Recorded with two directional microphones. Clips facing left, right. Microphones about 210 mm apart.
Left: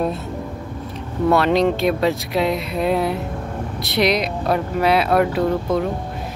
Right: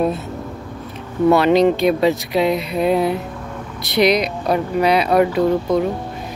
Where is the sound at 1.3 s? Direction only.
Centre (ahead or behind).